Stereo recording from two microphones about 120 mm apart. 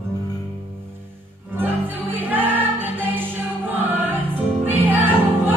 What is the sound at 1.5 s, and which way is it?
Music, 15° right (ahead or behind).